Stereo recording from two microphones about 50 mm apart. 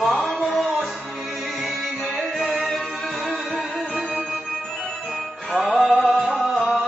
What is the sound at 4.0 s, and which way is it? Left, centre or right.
Music, centre.